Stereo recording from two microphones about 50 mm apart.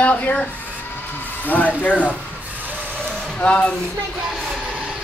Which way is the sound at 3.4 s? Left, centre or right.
Left.